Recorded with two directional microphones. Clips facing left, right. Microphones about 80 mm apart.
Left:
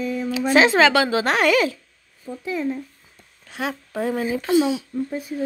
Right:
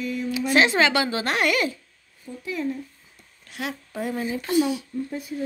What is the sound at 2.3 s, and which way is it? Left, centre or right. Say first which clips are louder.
Speech: left 5 dB; left.